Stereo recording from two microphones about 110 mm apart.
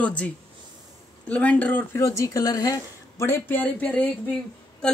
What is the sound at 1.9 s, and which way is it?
Speech, 25° left (ahead or behind).